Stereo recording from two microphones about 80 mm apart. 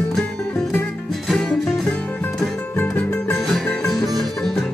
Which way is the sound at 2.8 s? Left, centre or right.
Left.